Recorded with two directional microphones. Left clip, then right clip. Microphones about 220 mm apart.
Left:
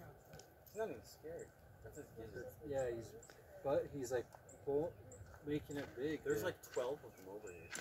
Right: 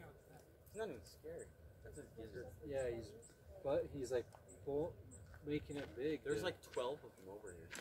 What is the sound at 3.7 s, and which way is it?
Speech, 25° left (ahead or behind).